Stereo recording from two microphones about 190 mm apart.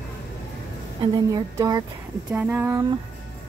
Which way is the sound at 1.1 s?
20° right (ahead or behind).